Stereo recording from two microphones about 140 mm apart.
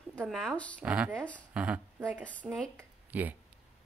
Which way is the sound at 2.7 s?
10° right (ahead or behind).